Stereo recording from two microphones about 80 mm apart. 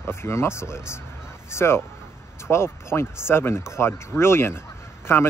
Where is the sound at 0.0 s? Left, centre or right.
Left.